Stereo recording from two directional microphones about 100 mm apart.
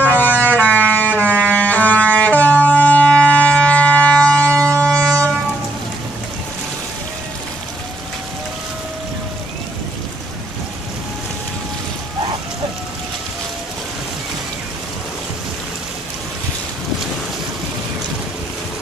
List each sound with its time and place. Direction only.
0.0 s a sound: 20° left (ahead or behind)
1.1 s music: 20° right (ahead or behind)
1.4 s music: 15° left (ahead or behind)
2.1 s wind instrument: 15° left (ahead or behind)
4.8 s vehicle: 5° left (ahead or behind)